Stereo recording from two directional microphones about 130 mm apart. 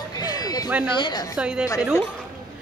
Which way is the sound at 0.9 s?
35° left (ahead or behind).